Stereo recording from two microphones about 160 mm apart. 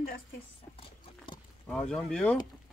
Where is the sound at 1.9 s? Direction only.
5° left (ahead or behind).